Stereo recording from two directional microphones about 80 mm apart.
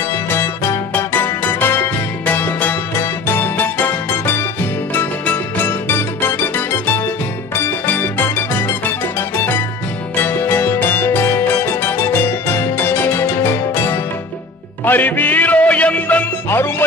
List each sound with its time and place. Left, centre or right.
0.3 s music: left
7.8 s music: left
10.2 s music: left
16.4 s music: left